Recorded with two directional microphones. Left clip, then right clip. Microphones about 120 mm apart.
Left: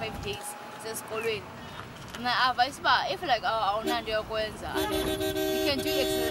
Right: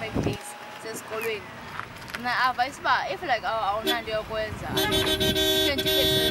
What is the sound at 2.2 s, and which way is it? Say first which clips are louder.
Speech: right 1 dB; 5° left (ahead or behind).